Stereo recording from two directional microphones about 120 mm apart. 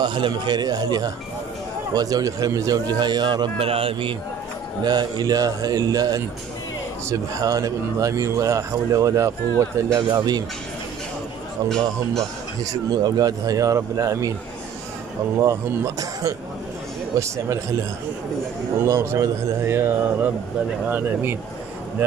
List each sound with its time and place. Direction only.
0.0 s speech: 40° right (ahead or behind)
3.5 s speech: 50° right (ahead or behind)
4.8 s speech: 35° right (ahead or behind)
11.7 s speech: 5° left (ahead or behind)
12.9 s speech: 35° right (ahead or behind)
15.3 s speech: 25° right (ahead or behind)
18.9 s speech: 25° right (ahead or behind)